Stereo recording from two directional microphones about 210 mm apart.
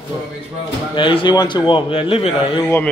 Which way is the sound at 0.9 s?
20° left (ahead or behind).